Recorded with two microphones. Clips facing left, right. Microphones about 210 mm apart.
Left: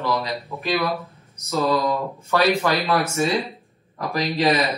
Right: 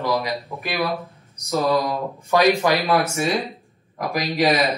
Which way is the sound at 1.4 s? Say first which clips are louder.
Right 1 dB; 15° right (ahead or behind).